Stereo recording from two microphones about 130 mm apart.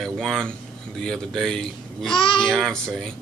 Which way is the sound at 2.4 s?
5° left (ahead or behind).